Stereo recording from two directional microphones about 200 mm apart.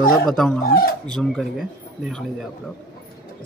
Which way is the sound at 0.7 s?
50° left (ahead or behind).